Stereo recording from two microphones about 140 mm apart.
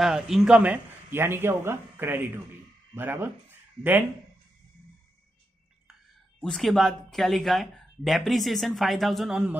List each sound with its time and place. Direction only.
0.0 s speech: 5° right (ahead or behind)
6.4 s speech: 5° left (ahead or behind)